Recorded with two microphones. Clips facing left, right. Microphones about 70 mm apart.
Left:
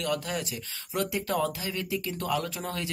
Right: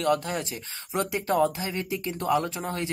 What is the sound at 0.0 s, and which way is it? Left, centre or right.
Speech, right.